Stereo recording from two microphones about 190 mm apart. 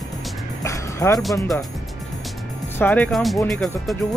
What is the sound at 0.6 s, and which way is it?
Music, 15° left (ahead or behind).